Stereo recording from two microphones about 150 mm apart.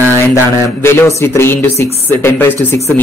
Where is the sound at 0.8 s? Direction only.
20° left (ahead or behind).